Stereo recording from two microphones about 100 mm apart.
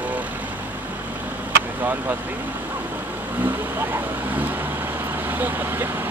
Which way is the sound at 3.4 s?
20° right (ahead or behind).